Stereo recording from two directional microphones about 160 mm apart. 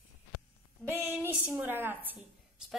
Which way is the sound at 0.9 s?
15° right (ahead or behind).